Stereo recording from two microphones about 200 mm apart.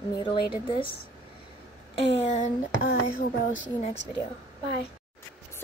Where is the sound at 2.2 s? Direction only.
35° left (ahead or behind).